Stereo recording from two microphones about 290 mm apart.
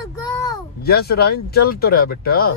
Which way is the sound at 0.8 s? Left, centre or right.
Left.